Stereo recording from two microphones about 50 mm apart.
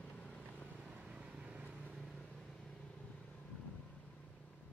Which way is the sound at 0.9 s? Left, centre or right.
Centre.